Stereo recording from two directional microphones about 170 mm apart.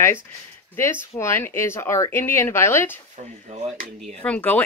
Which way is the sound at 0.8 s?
15° left (ahead or behind).